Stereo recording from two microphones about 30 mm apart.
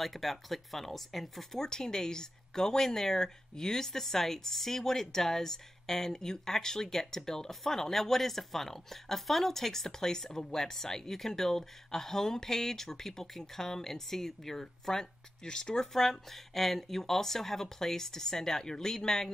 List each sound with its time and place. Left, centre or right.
0.0 s speech: centre
1.6 s speech: left
16.0 s speech: centre